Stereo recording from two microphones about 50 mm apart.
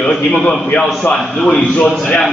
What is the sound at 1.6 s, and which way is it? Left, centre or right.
Speech, left.